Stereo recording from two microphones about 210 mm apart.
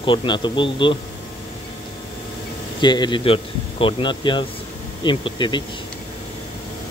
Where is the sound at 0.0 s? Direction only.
25° left (ahead or behind).